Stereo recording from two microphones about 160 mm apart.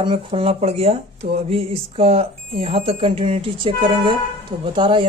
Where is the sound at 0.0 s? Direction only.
35° right (ahead or behind).